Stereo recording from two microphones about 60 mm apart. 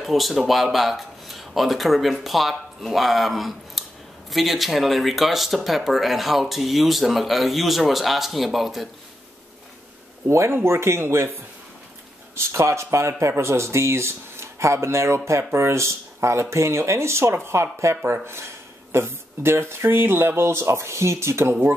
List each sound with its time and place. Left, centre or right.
0.0 s speech: centre
10.5 s speech: right
12.5 s speech: right